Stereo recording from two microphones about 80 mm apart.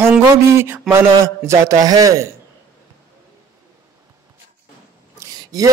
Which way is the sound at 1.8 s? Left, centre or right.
Right.